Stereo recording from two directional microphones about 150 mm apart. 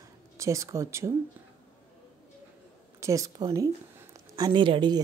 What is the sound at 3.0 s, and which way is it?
A woman's voice, 20° right (ahead or behind).